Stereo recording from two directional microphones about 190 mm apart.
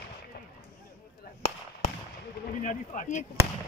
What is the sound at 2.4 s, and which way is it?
Speech, 40° left (ahead or behind).